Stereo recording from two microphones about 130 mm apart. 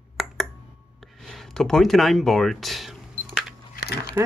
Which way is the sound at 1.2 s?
5° left (ahead or behind).